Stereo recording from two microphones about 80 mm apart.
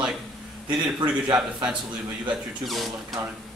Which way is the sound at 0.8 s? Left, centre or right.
Right.